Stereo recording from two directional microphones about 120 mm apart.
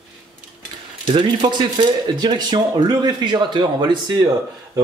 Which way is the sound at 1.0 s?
45° right (ahead or behind).